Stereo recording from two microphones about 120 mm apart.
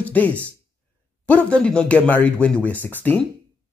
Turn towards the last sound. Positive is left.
turn(degrees=15)  # may be behind; listen again after turning